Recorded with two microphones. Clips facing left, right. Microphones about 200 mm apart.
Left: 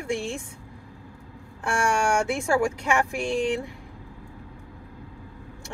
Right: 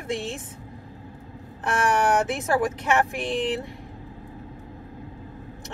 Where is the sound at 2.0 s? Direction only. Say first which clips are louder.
Right 1 dB; 20° right (ahead or behind).